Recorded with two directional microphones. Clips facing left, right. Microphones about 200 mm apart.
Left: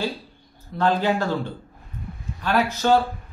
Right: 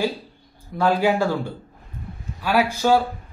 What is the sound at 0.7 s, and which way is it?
A man's voice, 10° right (ahead or behind).